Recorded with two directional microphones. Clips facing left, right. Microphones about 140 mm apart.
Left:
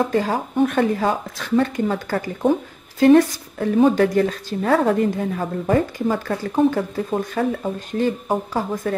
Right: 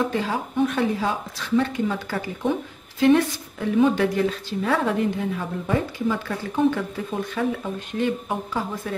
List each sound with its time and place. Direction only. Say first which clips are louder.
0.1 s a woman's voice: left 5 dB; 45° left (ahead or behind)